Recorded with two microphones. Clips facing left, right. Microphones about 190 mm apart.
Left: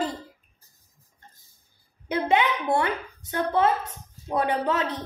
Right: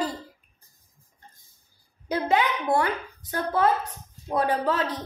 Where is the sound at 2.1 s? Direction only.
25° left (ahead or behind).